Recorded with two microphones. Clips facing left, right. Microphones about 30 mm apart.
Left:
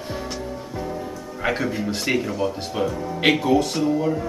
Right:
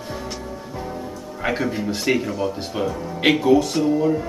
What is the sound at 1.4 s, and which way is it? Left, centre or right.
Speech, centre.